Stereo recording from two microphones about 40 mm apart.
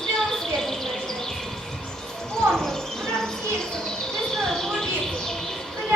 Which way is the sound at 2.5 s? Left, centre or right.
Centre.